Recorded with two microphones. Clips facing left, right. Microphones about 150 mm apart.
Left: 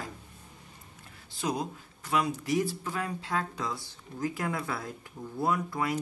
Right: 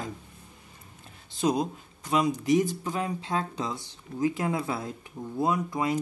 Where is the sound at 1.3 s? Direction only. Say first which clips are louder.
Right 6 dB; 20° right (ahead or behind).